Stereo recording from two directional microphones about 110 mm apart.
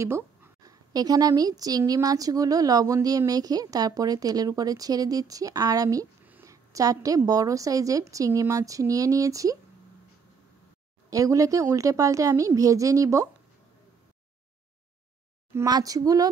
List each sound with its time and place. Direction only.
0.0 s a sound: 25° right (ahead or behind)
0.7 s a woman's voice: 35° right (ahead or behind)
11.1 s a woman's voice: 30° right (ahead or behind)
15.6 s a woman's voice: 35° right (ahead or behind)